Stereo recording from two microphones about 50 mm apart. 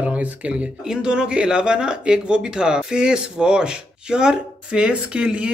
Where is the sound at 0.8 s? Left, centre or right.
Centre.